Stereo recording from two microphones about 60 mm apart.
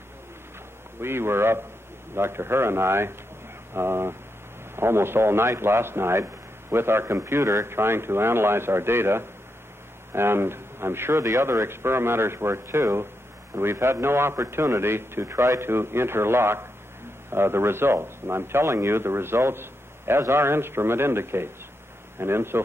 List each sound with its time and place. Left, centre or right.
1.0 s a man's voice: right